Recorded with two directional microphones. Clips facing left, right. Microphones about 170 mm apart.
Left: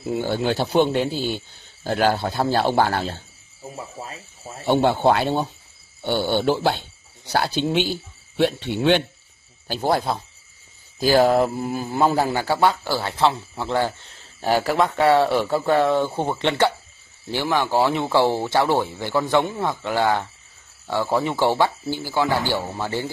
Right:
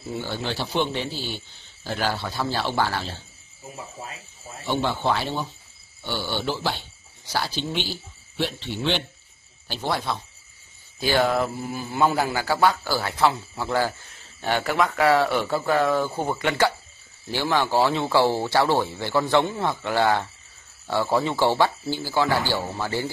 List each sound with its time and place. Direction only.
0.5 s a man's voice: 45° left (ahead or behind)
4.6 s a man's voice: 50° left (ahead or behind)
9.7 s speech: 45° left (ahead or behind)
12.0 s a man's voice: 30° left (ahead or behind)
14.4 s a man's voice: 35° left (ahead or behind); by 23.1 s 20° left (ahead or behind)